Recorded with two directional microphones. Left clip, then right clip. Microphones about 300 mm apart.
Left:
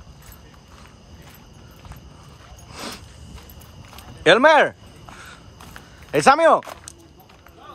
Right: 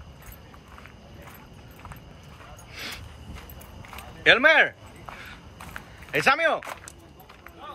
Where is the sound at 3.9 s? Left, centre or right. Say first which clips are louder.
Left 4 dB; centre.